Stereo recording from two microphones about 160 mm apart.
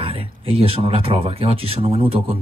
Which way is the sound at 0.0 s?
35° right (ahead or behind).